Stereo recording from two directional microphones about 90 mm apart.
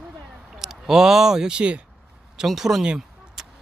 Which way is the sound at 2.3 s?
5° right (ahead or behind).